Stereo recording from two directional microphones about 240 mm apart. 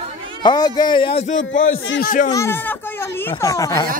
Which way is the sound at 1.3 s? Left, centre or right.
Left.